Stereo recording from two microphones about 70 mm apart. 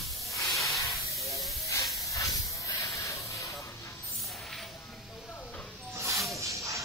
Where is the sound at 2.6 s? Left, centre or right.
Left.